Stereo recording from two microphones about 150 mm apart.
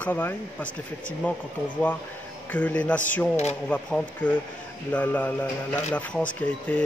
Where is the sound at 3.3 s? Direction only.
45° left (ahead or behind).